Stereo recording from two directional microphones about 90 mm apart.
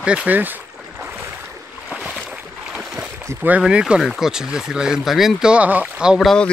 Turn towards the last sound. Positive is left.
turn(degrees=-10)  # may be behind; listen again after turning